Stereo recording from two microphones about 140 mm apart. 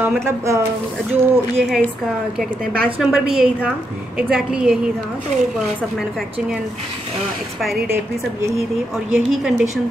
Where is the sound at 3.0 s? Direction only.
5° right (ahead or behind).